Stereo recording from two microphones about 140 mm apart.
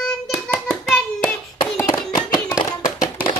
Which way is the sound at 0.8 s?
5° left (ahead or behind).